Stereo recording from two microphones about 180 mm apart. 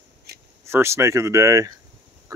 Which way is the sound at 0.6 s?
15° right (ahead or behind).